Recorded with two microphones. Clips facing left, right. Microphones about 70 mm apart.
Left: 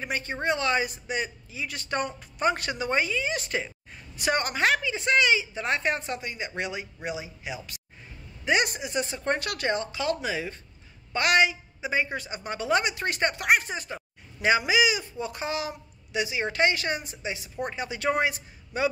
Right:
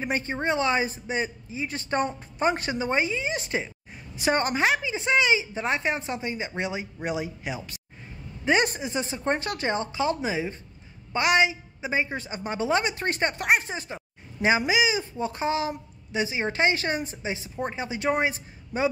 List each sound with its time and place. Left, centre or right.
0.0 s a man's voice: right
8.9 s a man's voice: right